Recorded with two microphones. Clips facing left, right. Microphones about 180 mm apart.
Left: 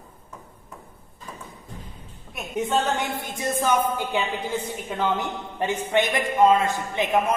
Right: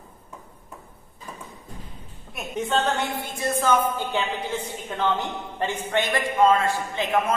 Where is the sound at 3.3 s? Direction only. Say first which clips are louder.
Right 1 dB; 15° left (ahead or behind).